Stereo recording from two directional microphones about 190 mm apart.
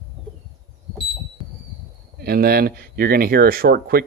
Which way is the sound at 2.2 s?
55° right (ahead or behind).